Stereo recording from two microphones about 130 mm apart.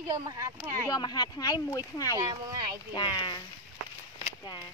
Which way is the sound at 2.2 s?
25° right (ahead or behind).